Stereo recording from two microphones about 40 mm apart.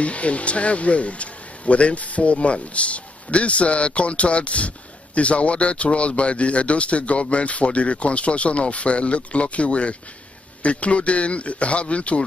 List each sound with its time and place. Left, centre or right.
0.0 s speech: left